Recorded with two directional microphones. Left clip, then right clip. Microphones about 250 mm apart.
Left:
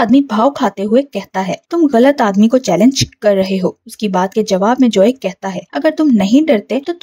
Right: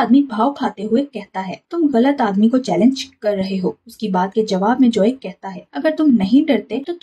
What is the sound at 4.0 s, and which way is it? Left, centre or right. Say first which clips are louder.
Speech: left 3 dB; left.